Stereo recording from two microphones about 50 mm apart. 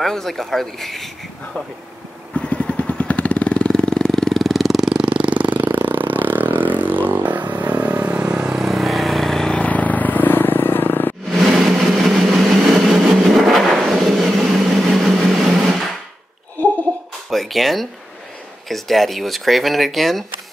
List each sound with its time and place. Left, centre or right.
0.0 s speech: centre
2.3 s vehicle: left
3.7 s vehicle: centre
5.0 s a sound: right
5.7 s vehicle: right
8.5 s vehicle: centre
9.5 s vehicle: left
11.3 s vehicle: centre
17.3 s a sound: centre
18.7 s speech: centre